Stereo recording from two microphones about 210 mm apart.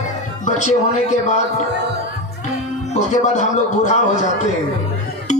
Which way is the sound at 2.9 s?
35° left (ahead or behind).